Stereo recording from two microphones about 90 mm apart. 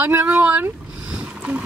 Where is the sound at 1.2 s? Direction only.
15° right (ahead or behind).